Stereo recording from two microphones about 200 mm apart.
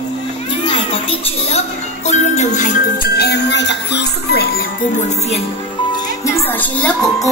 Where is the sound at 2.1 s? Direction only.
35° left (ahead or behind); by 4.5 s 55° left (ahead or behind).